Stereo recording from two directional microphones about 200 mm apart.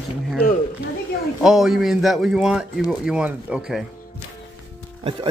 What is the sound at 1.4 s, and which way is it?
Speech, centre (ahead or behind).